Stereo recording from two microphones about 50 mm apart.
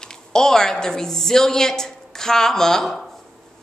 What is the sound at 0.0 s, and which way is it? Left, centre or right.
Speech, centre.